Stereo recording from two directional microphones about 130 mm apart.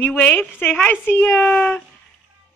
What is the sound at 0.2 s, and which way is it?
A woman's voice, 15° left (ahead or behind).